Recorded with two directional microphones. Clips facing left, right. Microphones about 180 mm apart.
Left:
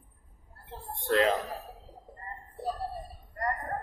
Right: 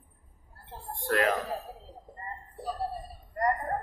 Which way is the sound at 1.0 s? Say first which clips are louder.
Left 2 dB; 25° left (ahead or behind).